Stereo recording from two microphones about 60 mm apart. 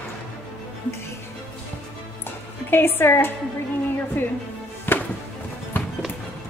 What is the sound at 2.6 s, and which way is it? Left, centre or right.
Speech, left.